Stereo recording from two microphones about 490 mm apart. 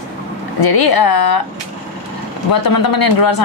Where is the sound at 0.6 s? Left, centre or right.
Left.